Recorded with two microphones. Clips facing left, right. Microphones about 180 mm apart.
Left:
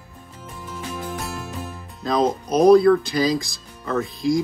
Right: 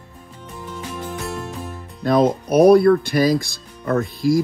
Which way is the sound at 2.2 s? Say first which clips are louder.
Right 2 dB; 60° right (ahead or behind).